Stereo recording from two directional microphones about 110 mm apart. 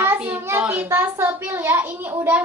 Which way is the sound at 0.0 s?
15° right (ahead or behind).